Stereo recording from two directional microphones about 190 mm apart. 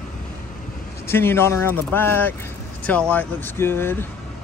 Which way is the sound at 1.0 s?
10° left (ahead or behind).